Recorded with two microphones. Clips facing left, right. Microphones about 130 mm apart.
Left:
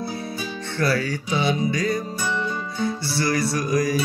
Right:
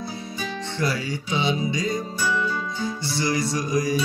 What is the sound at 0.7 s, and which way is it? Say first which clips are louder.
Music: left 4 dB; 20° right (ahead or behind).